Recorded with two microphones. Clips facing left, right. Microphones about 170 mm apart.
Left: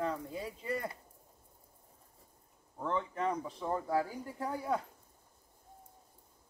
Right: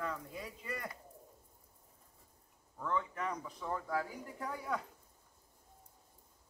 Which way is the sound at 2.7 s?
30° left (ahead or behind).